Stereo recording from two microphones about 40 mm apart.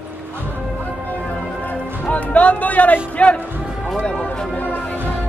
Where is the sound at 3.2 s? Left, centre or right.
Left.